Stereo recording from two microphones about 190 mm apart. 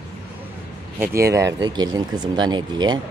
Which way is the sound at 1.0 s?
15° right (ahead or behind).